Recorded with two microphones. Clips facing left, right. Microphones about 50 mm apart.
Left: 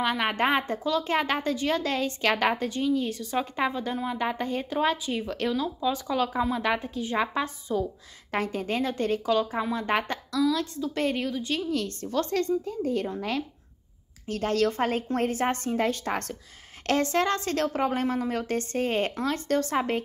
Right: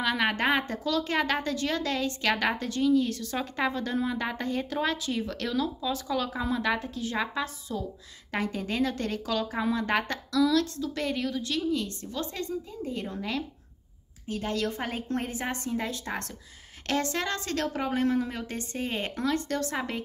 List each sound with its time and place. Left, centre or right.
0.2 s a woman's voice: left
11.7 s speech: left
14.2 s a woman's voice: left
19.2 s a woman's voice: left